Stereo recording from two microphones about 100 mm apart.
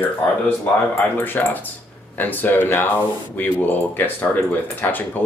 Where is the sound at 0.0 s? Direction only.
15° left (ahead or behind).